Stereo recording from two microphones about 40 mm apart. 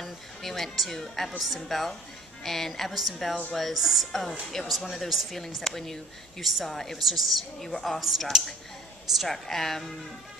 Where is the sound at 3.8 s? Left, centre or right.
Centre.